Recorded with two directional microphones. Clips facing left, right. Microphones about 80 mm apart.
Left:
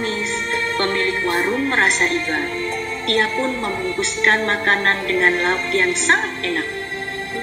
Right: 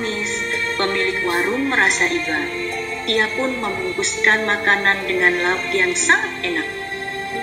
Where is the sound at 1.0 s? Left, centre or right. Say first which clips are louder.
Even; right.